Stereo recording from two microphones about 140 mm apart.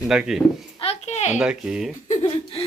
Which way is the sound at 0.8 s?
50° left (ahead or behind).